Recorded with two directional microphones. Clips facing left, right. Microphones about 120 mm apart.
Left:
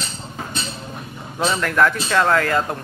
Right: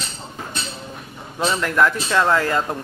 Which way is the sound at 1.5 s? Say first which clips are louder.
Even; 5° right (ahead or behind).